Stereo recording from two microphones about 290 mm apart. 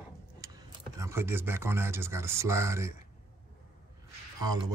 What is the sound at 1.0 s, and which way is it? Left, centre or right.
Speech, centre.